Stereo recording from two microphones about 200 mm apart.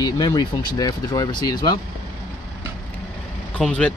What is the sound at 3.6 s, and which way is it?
Speech, 5° left (ahead or behind).